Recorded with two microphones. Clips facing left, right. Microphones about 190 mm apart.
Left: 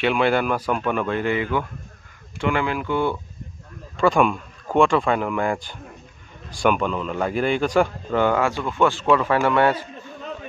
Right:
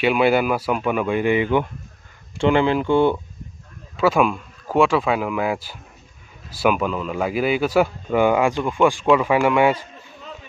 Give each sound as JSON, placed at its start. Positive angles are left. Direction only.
{"t": 0.0, "sound": "a man's voice", "side_deg": -10}
{"t": 3.9, "sound": "a man's voice", "side_deg": -5}